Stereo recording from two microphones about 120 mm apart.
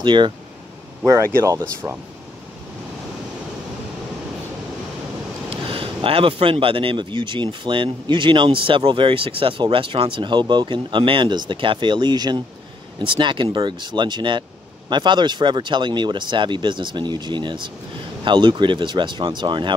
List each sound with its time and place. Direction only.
0.0 s speech: 40° right (ahead or behind)
1.0 s speech: 25° right (ahead or behind)
5.5 s speech: 45° right (ahead or behind)